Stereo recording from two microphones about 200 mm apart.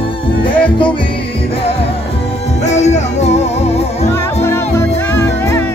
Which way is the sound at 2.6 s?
35° left (ahead or behind).